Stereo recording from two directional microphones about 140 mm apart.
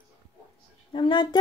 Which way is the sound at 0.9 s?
35° left (ahead or behind).